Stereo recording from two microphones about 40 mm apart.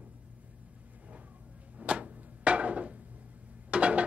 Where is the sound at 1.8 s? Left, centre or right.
Right.